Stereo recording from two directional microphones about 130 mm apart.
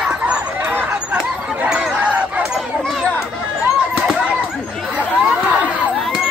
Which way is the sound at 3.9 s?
5° right (ahead or behind).